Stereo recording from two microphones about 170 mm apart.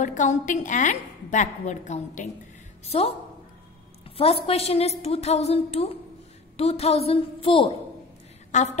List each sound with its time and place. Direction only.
0.0 s a woman's voice: 45° left (ahead or behind)
4.2 s a woman's voice: 35° left (ahead or behind)
8.5 s a woman's voice: 45° left (ahead or behind)